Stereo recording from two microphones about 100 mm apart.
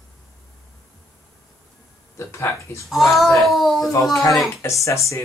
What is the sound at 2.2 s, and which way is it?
Speech, 30° left (ahead or behind).